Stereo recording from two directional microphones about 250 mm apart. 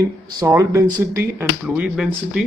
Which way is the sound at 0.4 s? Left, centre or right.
Centre.